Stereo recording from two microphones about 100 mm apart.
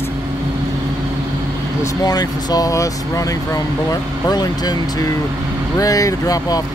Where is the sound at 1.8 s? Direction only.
40° left (ahead or behind).